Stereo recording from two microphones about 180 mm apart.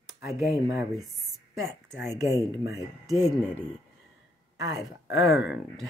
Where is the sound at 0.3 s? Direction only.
Centre (ahead or behind).